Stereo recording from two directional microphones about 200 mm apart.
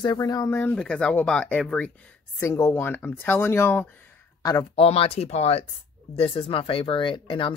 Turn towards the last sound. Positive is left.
turn(degrees=25)  # may be behind; listen again after turning